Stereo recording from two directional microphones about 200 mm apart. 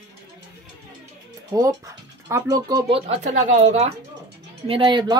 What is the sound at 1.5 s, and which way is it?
Speech, 20° right (ahead or behind).